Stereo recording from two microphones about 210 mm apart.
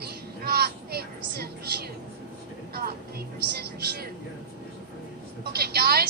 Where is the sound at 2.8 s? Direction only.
45° right (ahead or behind).